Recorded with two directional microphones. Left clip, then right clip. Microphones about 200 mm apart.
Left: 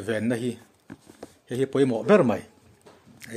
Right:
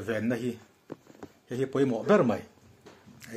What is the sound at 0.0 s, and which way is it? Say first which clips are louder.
Speech: left 3 dB; 40° left (ahead or behind).